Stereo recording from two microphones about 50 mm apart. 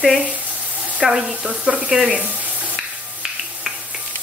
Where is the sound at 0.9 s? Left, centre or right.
Right.